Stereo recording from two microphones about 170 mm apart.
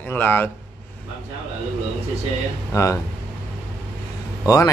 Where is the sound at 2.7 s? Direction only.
20° left (ahead or behind).